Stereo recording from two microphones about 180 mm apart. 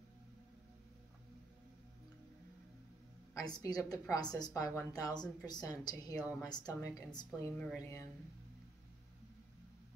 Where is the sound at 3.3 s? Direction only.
20° left (ahead or behind).